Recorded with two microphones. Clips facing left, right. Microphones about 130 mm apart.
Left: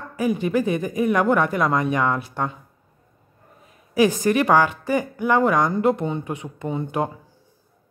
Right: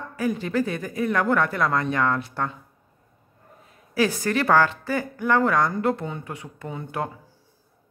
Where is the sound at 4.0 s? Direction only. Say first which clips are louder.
Left 5 dB; 15° left (ahead or behind).